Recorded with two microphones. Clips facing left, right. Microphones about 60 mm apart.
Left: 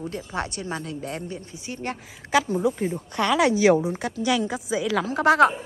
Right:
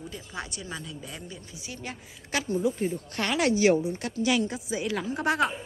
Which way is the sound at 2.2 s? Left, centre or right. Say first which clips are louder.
Left 10 dB; left.